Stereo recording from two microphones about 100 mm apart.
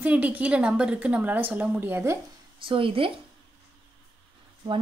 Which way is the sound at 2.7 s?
60° right (ahead or behind).